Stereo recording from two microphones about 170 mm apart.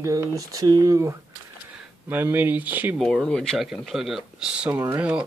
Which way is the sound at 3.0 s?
5° left (ahead or behind).